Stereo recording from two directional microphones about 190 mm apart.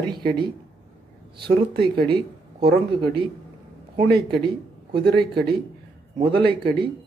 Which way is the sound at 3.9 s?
55° right (ahead or behind).